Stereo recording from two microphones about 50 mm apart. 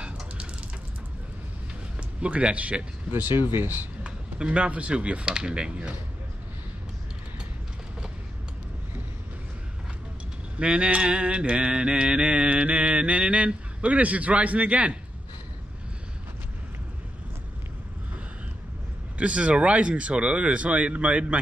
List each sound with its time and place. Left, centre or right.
2.0 s speech: right
3.1 s speech: right
4.0 s speech: right
10.6 s mantra: right
19.1 s mantra: right